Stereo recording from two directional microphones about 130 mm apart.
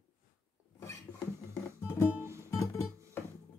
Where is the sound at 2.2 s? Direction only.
20° right (ahead or behind).